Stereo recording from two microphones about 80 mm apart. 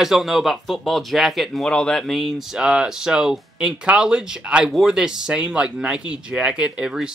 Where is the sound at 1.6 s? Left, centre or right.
Centre.